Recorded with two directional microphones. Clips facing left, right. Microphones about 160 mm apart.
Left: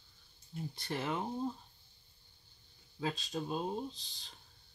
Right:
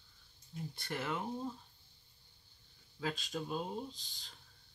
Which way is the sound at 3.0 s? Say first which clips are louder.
Left 2 dB; 30° left (ahead or behind).